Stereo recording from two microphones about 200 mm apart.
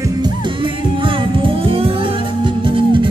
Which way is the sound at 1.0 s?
25° right (ahead or behind).